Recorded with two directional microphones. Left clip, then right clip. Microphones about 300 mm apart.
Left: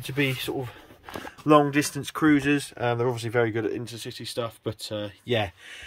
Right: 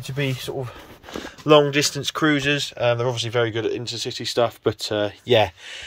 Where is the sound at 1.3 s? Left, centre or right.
Centre.